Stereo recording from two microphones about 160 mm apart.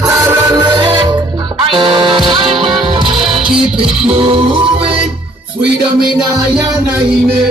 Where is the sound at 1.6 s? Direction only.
30° right (ahead or behind).